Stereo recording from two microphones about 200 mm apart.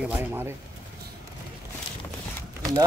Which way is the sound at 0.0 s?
10° right (ahead or behind).